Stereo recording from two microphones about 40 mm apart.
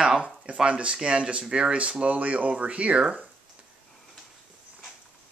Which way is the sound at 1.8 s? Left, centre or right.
Right.